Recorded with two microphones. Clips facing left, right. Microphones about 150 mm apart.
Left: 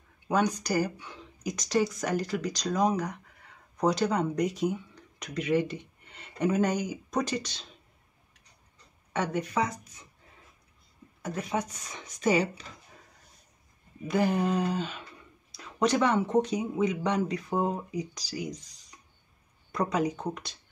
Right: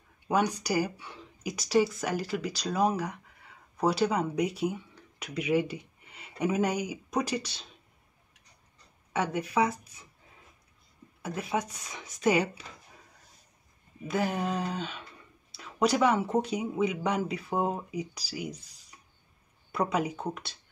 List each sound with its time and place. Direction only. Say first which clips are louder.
0.3 s speech: left 1 dB; 10° right (ahead or behind)
9.1 s speech: even; 10° right (ahead or behind)
11.2 s speech: even; 10° right (ahead or behind)
14.0 s a sound: left 3 dB; centre (ahead or behind)
15.5 s speech: even; 5° right (ahead or behind)
19.7 s a sound: left 1 dB; 10° right (ahead or behind)